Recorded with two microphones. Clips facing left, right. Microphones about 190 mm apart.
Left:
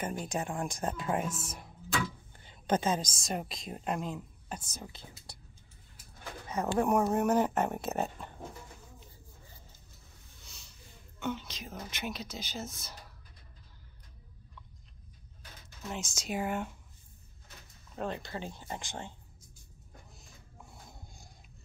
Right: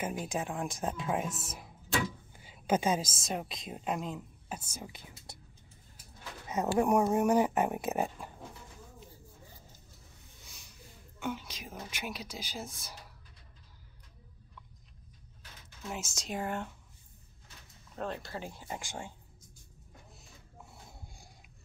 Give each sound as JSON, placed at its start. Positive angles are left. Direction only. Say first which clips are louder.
{"t": 0.0, "sound": "a woman's voice", "louder": "even", "side_deg": -5}
{"t": 6.4, "sound": "speech", "louder": "right 1 dB", "side_deg": -20}
{"t": 7.0, "sound": "speech", "louder": "right 1 dB", "side_deg": 0}
{"t": 7.2, "sound": "speech", "louder": "right 1 dB", "side_deg": -10}
{"t": 10.4, "sound": "a sound", "louder": "even", "side_deg": -15}
{"t": 11.1, "sound": "speech", "louder": "left 1 dB", "side_deg": -10}
{"t": 15.9, "sound": "speech", "louder": "left 2 dB", "side_deg": -5}
{"t": 17.9, "sound": "speech", "louder": "left 1 dB", "side_deg": 0}